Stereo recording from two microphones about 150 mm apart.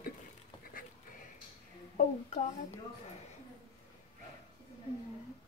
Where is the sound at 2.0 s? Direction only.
50° left (ahead or behind).